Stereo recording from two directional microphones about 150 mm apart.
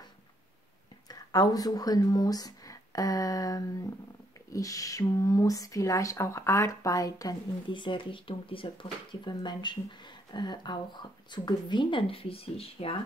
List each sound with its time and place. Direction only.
1.0 s speech: 25° left (ahead or behind)